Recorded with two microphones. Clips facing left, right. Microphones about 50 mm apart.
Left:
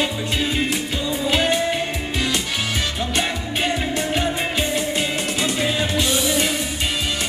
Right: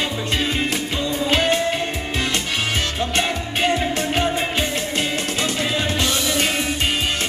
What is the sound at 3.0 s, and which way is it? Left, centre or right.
Music, right.